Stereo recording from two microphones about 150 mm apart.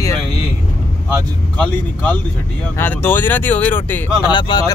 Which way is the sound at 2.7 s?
15° left (ahead or behind).